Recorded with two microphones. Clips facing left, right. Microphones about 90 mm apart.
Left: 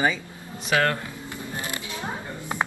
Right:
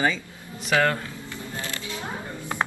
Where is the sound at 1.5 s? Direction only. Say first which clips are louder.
Even; 20° left (ahead or behind).